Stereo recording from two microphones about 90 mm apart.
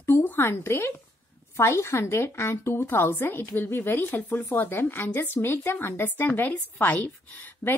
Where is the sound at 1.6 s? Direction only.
30° left (ahead or behind).